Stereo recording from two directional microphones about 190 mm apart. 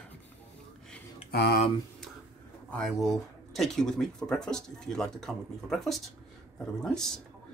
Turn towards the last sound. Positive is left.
turn(degrees=0)  # may be behind; listen again after turning